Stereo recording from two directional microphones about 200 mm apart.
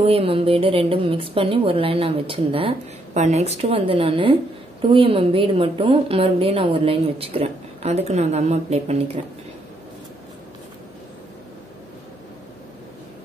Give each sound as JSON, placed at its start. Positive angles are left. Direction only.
{"t": 0.0, "sound": "a woman's voice", "side_deg": -30}